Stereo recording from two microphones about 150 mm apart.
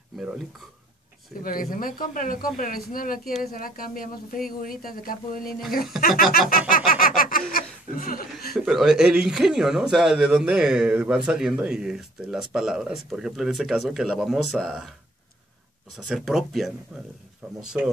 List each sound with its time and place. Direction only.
0.2 s speech: 5° right (ahead or behind)
1.4 s speech: 70° left (ahead or behind)
6.7 s a sound: 70° left (ahead or behind)
7.9 s speech: 70° left (ahead or behind)
8.5 s speech: centre (ahead or behind)
16.1 s speech: centre (ahead or behind)